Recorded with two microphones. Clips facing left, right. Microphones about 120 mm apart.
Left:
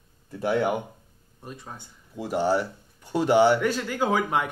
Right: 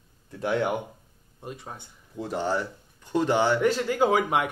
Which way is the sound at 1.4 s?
20° right (ahead or behind).